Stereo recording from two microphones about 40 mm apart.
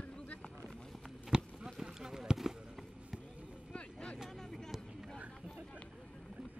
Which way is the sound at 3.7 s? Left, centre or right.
Left.